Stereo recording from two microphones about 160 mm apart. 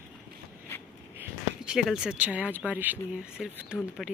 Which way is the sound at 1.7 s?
5° right (ahead or behind).